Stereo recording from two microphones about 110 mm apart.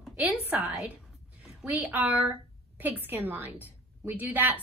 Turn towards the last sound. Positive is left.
turn(degrees=-15)  # may be behind; listen again after turning